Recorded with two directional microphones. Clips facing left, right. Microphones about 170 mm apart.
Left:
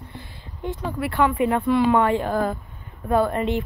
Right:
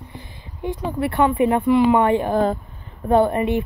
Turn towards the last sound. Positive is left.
turn(degrees=-15)  # may be behind; listen again after turning